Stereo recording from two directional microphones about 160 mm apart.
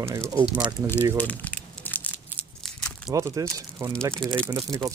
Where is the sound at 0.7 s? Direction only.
15° left (ahead or behind).